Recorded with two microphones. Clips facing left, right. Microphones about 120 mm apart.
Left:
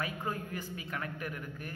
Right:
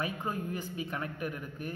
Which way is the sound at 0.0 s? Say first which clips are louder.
Right 2 dB; 20° right (ahead or behind).